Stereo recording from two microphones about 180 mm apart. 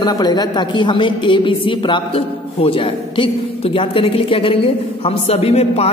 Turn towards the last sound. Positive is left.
turn(degrees=35)  # may be behind; listen again after turning